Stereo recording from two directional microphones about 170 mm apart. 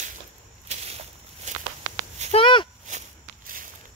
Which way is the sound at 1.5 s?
45° right (ahead or behind).